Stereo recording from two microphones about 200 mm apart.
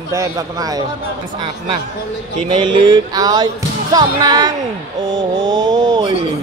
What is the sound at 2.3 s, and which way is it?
Speech, 25° right (ahead or behind).